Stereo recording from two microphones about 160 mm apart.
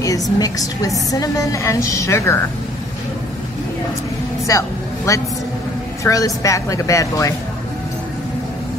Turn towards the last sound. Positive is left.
turn(degrees=20)  # may be behind; listen again after turning